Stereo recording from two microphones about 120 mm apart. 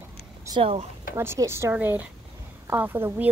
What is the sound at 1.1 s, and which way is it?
A woman's voice, 20° right (ahead or behind).